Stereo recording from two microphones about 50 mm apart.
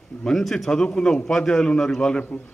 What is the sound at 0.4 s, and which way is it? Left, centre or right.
Speech, centre.